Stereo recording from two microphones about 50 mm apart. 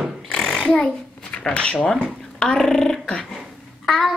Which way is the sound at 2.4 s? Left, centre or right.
Centre.